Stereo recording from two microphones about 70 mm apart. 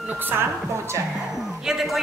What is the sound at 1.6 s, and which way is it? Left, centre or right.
Speech, centre.